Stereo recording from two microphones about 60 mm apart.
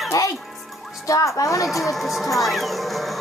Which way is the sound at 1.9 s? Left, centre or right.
Centre.